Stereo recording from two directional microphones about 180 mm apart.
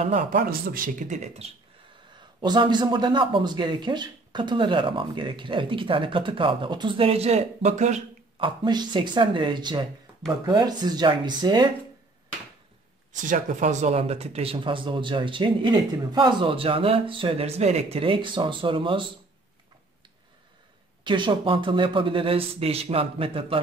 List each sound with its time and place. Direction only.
0.0 s speech: 40° right (ahead or behind)
0.4 s speech: 55° right (ahead or behind)
2.4 s speech: 25° right (ahead or behind); by 8.0 s 40° right (ahead or behind)
8.4 s speech: 25° right (ahead or behind)
13.1 s speech: 45° right (ahead or behind); by 19.0 s 30° right (ahead or behind)
21.0 s speech: 25° right (ahead or behind)